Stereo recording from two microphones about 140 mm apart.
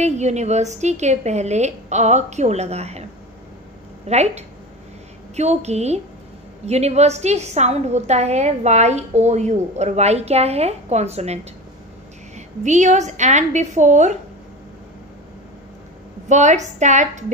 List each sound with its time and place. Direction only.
0.0 s a woman's voice: 55° right (ahead or behind)
4.1 s a woman's voice: 50° right (ahead or behind)
12.4 s a woman's voice: 60° right (ahead or behind)
16.3 s a woman's voice: 55° right (ahead or behind)